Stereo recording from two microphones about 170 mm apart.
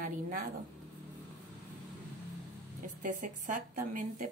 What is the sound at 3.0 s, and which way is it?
A woman's voice, 50° right (ahead or behind).